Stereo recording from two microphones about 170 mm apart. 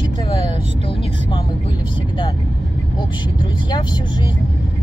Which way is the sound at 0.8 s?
30° left (ahead or behind).